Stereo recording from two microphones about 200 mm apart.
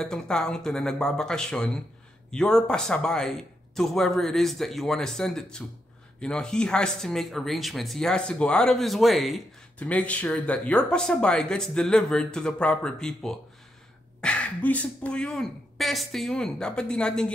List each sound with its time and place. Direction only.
0.0 s speech: 5° left (ahead or behind)